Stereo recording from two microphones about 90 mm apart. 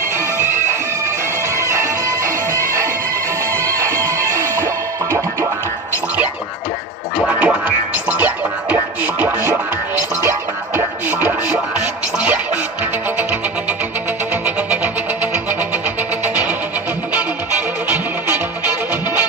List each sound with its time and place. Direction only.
1.6 s music: 35° right (ahead or behind)
7.2 s music: 15° right (ahead or behind)
11.1 s music: 20° right (ahead or behind)
17.8 s music: 20° right (ahead or behind)